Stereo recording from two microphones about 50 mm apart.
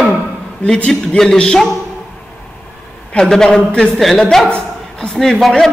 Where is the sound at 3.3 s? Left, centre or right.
Centre.